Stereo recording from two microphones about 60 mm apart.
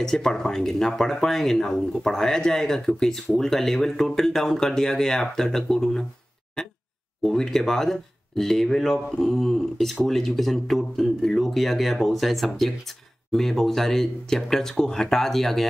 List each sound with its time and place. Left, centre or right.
0.0 s speech: centre
7.2 s speech: centre